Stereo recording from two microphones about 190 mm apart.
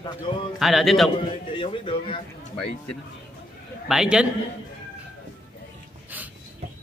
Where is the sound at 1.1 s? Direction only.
25° left (ahead or behind).